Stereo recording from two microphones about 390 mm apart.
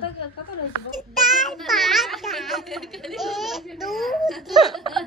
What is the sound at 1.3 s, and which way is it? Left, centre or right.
A child's voice, centre.